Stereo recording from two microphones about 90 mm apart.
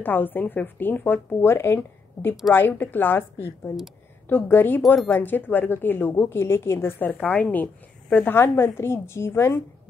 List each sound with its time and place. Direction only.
0.0 s a woman's voice: 20° left (ahead or behind)